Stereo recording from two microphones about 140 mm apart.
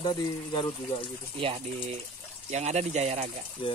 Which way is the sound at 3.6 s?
35° left (ahead or behind).